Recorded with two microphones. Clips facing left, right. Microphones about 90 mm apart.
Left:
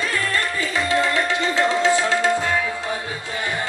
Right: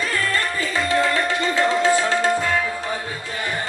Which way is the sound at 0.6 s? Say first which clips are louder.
Even; 30° right (ahead or behind).